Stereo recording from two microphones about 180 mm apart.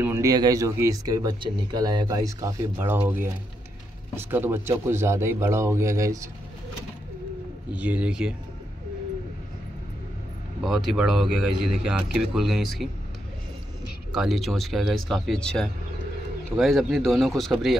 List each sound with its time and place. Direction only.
0.0 s speech: 15° right (ahead or behind)
7.7 s speech: 10° right (ahead or behind)
10.6 s speech: centre (ahead or behind)
14.1 s speech: centre (ahead or behind)